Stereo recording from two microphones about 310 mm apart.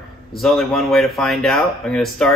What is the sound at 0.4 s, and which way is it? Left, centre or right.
Speech, centre.